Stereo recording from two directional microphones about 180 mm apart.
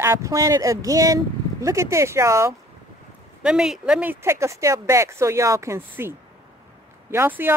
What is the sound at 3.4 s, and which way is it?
Speech, 5° right (ahead or behind).